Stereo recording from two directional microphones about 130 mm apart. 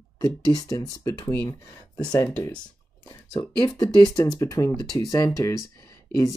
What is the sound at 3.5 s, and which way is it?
Speech, 35° left (ahead or behind).